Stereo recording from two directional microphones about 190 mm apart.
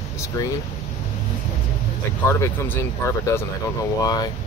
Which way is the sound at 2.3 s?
10° left (ahead or behind).